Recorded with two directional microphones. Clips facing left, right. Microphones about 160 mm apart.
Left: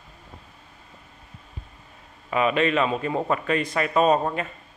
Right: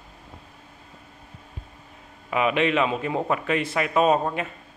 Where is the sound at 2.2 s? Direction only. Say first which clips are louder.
Even; 10° right (ahead or behind).